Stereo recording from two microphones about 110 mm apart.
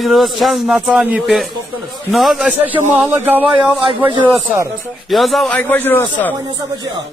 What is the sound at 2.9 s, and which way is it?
Speech, 20° right (ahead or behind).